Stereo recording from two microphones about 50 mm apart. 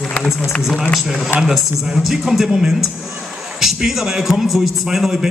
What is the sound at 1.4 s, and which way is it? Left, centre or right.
A man's voice, centre.